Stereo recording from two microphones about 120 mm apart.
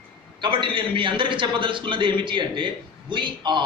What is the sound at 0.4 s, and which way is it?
A man's voice, 45° right (ahead or behind).